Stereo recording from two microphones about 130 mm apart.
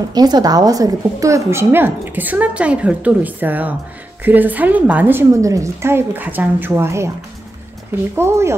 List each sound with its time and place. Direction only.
0.1 s a woman's voice: 30° right (ahead or behind)
8.2 s speech: 20° right (ahead or behind)